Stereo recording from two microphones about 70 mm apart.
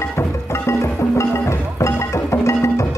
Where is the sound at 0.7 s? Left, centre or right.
Left.